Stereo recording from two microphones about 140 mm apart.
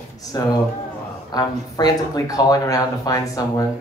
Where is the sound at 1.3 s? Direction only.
25° left (ahead or behind).